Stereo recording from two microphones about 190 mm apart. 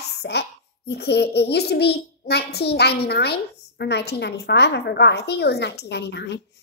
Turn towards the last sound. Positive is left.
turn(degrees=65)  # may be behind; listen again after turning